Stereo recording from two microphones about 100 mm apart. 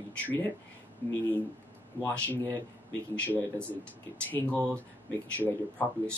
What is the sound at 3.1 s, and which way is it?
Speech, 15° left (ahead or behind).